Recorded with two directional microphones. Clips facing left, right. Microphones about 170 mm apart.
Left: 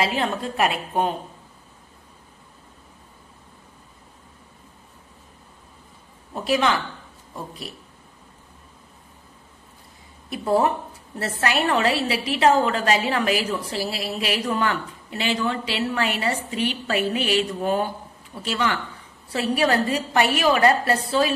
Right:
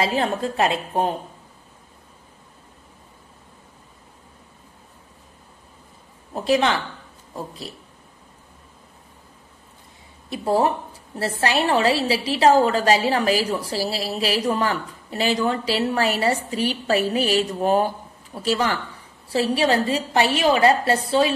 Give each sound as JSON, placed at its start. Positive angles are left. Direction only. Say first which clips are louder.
{"t": 0.0, "sound": "a woman's voice", "louder": "right 2 dB", "side_deg": -35}
{"t": 6.3, "sound": "a woman's voice", "louder": "right 2 dB", "side_deg": -30}
{"t": 10.3, "sound": "a woman's voice", "louder": "even", "side_deg": -30}